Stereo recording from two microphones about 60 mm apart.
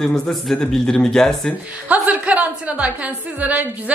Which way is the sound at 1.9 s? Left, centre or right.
Right.